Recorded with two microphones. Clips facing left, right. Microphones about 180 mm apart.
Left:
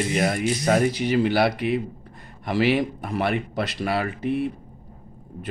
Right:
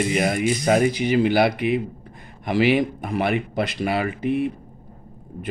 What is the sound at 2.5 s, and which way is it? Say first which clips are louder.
Speech: right 2 dB; 10° right (ahead or behind).